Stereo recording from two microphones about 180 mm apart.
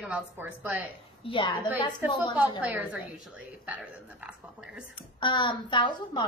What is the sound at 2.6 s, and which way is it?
Speech, 10° right (ahead or behind).